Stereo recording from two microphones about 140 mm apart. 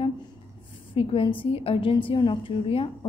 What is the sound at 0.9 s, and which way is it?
A woman's voice, 40° left (ahead or behind).